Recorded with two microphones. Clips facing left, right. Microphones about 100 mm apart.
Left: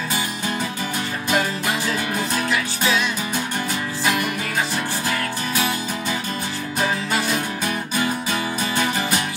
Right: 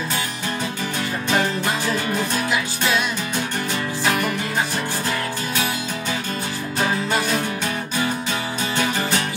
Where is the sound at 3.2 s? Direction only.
10° left (ahead or behind).